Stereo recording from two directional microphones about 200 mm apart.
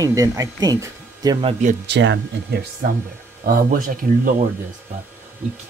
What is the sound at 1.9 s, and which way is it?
Speech, 60° right (ahead or behind).